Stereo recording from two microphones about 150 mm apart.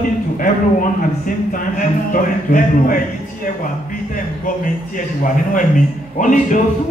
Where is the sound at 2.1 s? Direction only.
65° left (ahead or behind).